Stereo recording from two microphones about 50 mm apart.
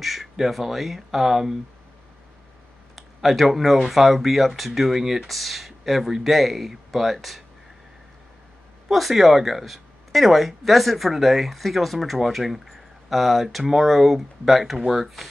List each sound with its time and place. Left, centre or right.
0.0 s speech: centre
3.0 s speech: centre
8.9 s speech: centre